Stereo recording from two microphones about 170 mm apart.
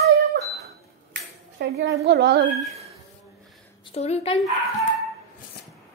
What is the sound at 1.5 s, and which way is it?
Speech, 75° right (ahead or behind).